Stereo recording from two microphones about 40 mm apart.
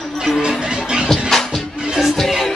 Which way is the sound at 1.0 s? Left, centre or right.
Centre.